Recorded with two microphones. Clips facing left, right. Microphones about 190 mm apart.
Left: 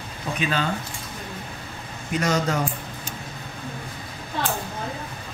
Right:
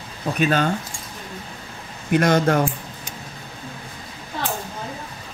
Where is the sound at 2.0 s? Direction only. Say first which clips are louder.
Right 6 dB; 55° right (ahead or behind).